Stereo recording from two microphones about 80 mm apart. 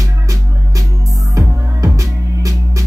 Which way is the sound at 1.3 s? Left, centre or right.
Right.